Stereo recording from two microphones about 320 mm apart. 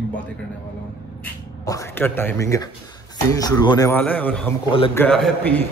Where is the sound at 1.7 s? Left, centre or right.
Centre.